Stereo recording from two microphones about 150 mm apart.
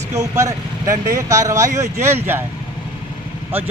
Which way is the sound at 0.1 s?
20° right (ahead or behind).